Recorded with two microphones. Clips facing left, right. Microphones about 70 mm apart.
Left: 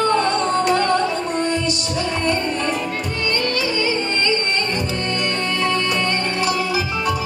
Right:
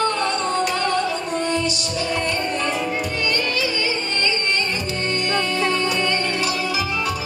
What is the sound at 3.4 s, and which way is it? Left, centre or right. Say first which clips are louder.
Music: left 2 dB; left.